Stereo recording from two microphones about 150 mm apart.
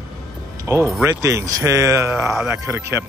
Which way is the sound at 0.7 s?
15° right (ahead or behind).